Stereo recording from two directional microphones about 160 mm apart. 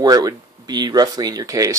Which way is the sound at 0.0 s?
25° right (ahead or behind).